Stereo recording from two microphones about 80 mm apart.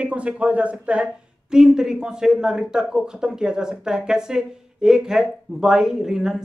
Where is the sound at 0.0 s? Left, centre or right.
Centre.